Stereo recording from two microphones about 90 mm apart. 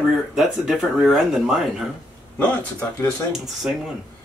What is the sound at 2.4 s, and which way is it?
Speech, 15° left (ahead or behind).